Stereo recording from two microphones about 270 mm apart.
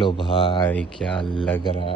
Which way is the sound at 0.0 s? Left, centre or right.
Centre.